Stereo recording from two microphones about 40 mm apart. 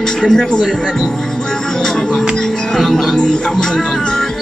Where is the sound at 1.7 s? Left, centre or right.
Centre.